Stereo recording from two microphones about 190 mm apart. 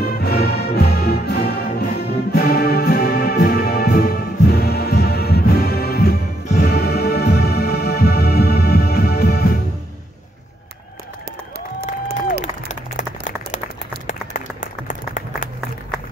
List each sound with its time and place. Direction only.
0.0 s music: 55° left (ahead or behind)
6.4 s music: 40° left (ahead or behind)
6.7 s music: 55° left (ahead or behind)
12.6 s clapping: 40° left (ahead or behind)
14.0 s applause: 40° left (ahead or behind)